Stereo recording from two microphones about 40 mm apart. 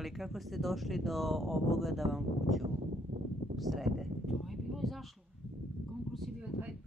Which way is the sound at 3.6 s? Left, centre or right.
Centre.